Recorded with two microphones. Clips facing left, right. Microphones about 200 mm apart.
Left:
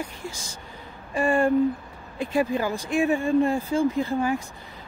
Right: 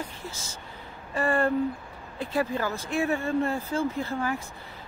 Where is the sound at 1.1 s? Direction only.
15° left (ahead or behind).